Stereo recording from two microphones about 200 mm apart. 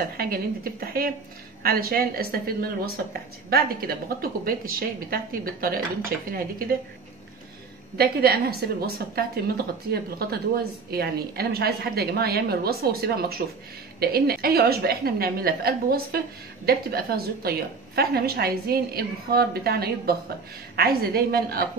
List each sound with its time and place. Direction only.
0.2 s a woman's voice: 50° right (ahead or behind)
8.0 s a woman's voice: 50° right (ahead or behind)